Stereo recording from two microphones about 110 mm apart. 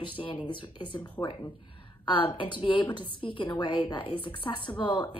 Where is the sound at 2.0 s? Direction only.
50° left (ahead or behind).